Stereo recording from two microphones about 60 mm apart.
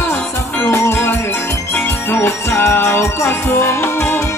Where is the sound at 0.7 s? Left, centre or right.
Left.